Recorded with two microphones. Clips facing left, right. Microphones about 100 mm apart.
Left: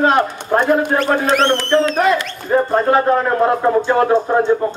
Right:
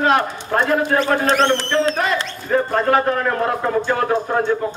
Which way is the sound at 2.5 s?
25° left (ahead or behind).